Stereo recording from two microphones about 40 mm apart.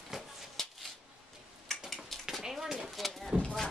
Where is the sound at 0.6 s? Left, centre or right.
Centre.